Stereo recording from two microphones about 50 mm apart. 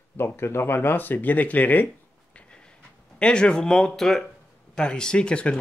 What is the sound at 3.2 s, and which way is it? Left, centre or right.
Speech, centre.